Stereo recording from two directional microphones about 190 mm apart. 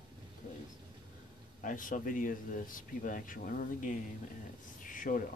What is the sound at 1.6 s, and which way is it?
Speech, 45° left (ahead or behind).